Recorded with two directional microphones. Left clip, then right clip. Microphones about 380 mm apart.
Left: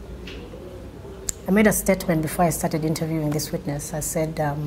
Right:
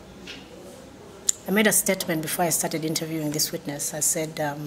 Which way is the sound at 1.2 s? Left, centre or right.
Left.